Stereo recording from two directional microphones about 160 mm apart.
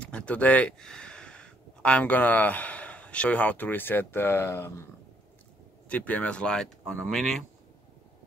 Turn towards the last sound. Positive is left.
turn(degrees=0)  # may be behind; listen again after turning